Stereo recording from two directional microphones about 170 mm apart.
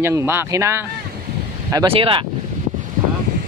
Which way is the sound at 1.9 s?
30° right (ahead or behind).